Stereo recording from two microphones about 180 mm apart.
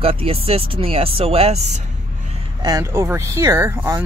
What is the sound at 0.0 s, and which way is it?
Speech, 30° right (ahead or behind).